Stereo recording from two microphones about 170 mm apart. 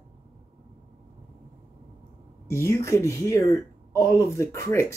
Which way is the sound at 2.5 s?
15° left (ahead or behind).